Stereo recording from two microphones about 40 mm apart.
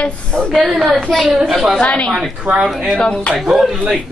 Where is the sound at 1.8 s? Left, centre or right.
Left.